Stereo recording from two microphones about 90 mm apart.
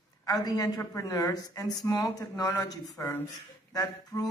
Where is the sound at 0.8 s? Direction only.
30° left (ahead or behind).